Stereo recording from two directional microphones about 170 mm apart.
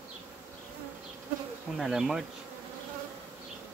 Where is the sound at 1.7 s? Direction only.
Centre (ahead or behind).